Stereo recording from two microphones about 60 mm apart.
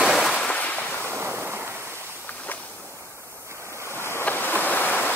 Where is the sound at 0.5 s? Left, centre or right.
Left.